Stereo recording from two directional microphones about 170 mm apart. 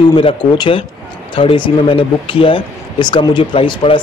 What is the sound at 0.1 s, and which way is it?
Speech, 30° left (ahead or behind).